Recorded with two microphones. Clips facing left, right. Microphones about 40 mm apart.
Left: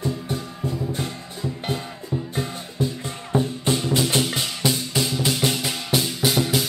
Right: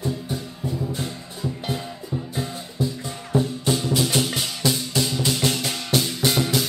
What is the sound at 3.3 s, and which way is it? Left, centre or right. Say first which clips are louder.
Music: even; left.